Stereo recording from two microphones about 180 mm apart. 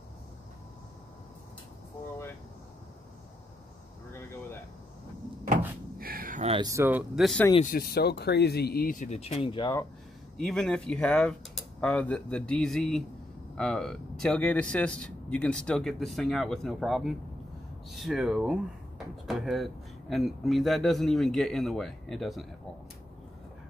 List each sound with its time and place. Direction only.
4.1 s a sound: 15° left (ahead or behind)
5.9 s a sound: 55° right (ahead or behind)
6.4 s speech: 30° right (ahead or behind)
6.7 s speech: 10° right (ahead or behind)
7.6 s speech: 55° left (ahead or behind); by 9.8 s 25° left (ahead or behind)
10.3 s speech: 5° left (ahead or behind)